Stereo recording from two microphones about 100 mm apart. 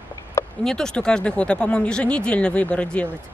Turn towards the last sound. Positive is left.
turn(degrees=15)  # may be behind; listen again after turning